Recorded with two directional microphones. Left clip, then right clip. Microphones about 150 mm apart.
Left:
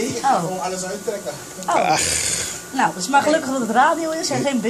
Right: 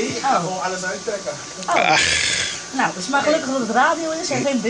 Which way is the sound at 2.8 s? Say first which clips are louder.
Left 3 dB; 10° right (ahead or behind).